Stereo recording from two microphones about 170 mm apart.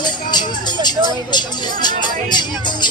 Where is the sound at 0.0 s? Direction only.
25° left (ahead or behind).